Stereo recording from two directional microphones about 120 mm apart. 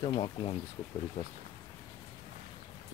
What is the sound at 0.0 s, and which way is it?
Speech, 45° left (ahead or behind).